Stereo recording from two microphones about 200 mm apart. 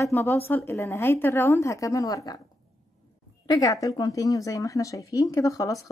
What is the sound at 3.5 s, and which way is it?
A woman's voice, 15° left (ahead or behind).